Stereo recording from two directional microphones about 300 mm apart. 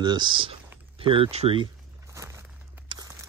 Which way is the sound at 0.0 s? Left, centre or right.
Centre.